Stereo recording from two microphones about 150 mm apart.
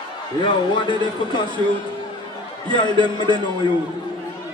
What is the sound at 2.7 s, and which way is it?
Speech, 30° left (ahead or behind).